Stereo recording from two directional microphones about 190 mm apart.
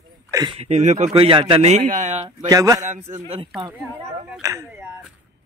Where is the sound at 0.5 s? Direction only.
35° right (ahead or behind).